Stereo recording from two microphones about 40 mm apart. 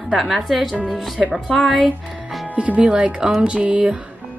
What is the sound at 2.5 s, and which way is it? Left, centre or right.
Speech, right.